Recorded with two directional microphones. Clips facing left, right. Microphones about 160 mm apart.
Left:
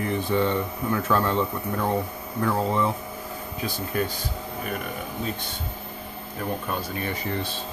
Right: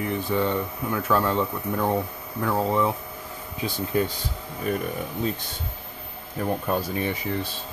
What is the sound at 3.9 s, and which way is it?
Speech, 20° right (ahead or behind).